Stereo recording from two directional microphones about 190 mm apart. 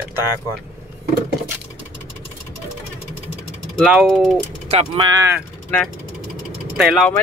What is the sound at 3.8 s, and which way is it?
Speech, centre (ahead or behind).